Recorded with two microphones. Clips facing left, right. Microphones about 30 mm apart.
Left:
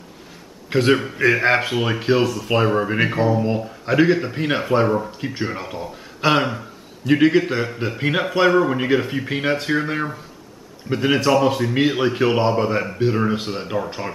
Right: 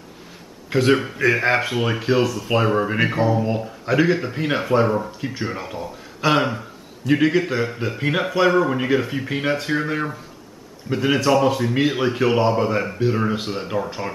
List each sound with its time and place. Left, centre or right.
0.7 s a man's voice: centre
1.2 s a man's voice: centre